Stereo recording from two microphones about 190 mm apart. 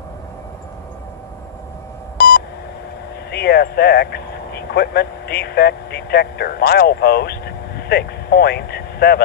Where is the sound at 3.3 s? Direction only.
55° left (ahead or behind).